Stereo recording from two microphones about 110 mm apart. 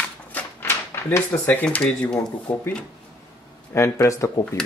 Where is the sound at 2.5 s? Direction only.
15° left (ahead or behind).